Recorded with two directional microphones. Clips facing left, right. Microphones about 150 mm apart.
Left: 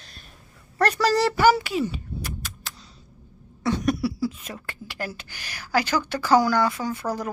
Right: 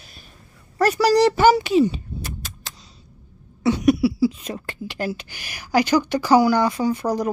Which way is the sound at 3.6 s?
10° right (ahead or behind).